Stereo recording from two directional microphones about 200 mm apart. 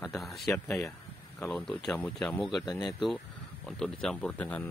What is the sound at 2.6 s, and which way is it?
Speech, 20° left (ahead or behind).